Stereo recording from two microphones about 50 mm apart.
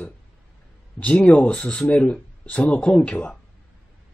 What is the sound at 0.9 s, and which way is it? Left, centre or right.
Speech, left.